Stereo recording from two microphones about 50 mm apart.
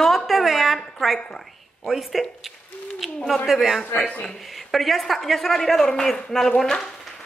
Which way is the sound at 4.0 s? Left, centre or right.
Left.